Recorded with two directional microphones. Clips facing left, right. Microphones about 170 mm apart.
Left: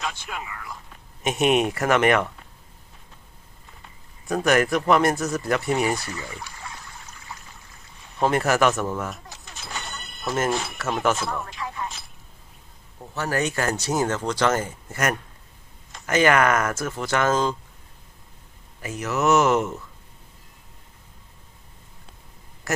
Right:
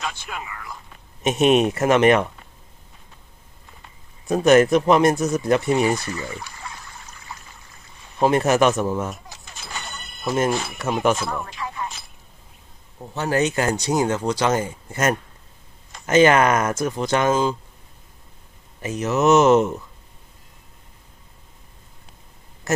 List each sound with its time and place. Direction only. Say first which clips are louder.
1.2 s speech: right 4 dB; 20° right (ahead or behind)
4.3 s speech: right 6 dB; 20° right (ahead or behind)
8.2 s speech: right 3 dB; 20° right (ahead or behind)
9.1 s a sound: right 1 dB; centre (ahead or behind)
10.5 s speech: right 2 dB; centre (ahead or behind)
11.1 s a sound: right 2 dB; centre (ahead or behind)
13.1 s speech: right 4 dB; 20° right (ahead or behind)
18.8 s speech: right 5 dB; 20° right (ahead or behind)